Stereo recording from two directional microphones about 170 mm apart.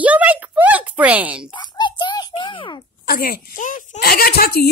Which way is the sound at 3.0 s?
60° left (ahead or behind).